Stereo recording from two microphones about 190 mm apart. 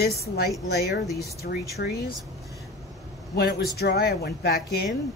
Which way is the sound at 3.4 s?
55° left (ahead or behind).